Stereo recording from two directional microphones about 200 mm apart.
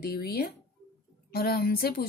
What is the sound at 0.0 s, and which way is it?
Speech, 50° left (ahead or behind).